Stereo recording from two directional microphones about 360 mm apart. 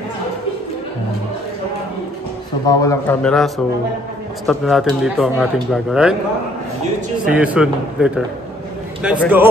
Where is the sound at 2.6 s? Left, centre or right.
Centre.